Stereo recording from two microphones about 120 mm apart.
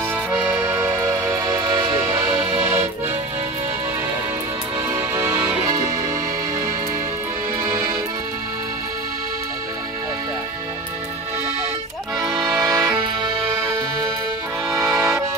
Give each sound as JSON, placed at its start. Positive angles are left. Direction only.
{"t": 0.3, "sound": "music", "side_deg": -15}
{"t": 4.8, "sound": "music", "side_deg": -20}
{"t": 7.6, "sound": "music", "side_deg": -20}
{"t": 12.4, "sound": "accordion", "side_deg": 0}
{"t": 14.7, "sound": "accordion", "side_deg": -5}